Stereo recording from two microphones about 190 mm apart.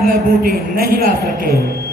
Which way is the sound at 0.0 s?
50° right (ahead or behind).